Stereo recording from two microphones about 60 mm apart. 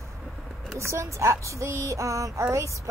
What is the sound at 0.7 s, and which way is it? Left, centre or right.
Speech, right.